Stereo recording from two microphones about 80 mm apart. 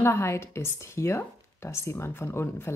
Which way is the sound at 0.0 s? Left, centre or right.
Left.